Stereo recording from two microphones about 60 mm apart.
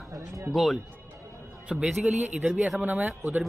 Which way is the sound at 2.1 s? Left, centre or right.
Right.